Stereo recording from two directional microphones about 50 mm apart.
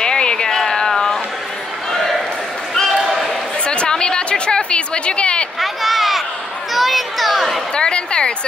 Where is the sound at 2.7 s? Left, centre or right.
Centre.